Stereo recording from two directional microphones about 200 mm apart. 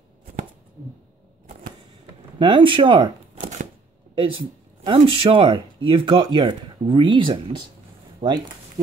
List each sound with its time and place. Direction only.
2.3 s speech: 25° right (ahead or behind)
8.2 s speech: 35° right (ahead or behind)